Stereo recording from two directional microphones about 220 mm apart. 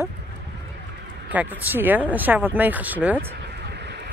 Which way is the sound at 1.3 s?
5° right (ahead or behind).